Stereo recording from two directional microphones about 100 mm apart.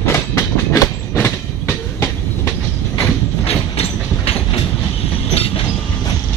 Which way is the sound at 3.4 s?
80° left.